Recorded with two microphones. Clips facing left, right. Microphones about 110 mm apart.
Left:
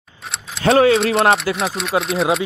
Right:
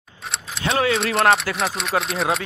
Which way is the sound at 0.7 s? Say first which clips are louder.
Left 8 dB; 35° left (ahead or behind).